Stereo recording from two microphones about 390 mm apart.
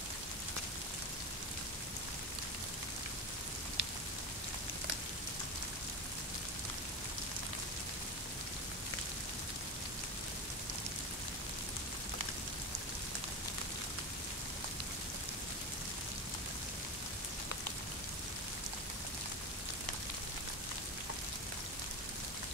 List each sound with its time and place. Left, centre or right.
3.8 s rain: right